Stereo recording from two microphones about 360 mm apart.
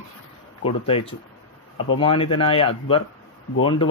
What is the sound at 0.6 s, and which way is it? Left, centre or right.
Speech, centre.